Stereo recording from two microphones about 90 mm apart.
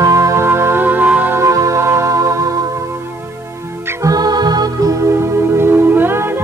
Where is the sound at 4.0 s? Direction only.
45° right (ahead or behind).